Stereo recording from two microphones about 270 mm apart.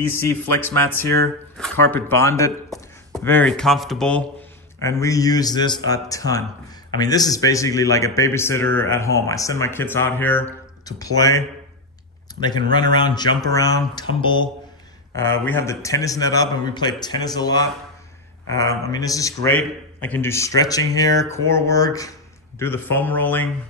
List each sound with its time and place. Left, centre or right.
0.0 s a man's voice: centre